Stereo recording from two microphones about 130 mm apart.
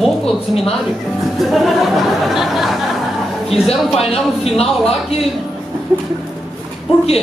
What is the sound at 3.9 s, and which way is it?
Speech, 50° left (ahead or behind).